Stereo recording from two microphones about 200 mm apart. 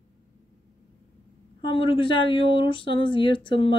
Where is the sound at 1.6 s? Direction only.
25° left (ahead or behind).